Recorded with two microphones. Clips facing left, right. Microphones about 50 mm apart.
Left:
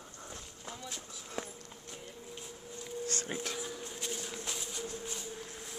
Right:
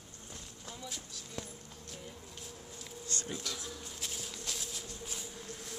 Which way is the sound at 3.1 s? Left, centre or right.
Left.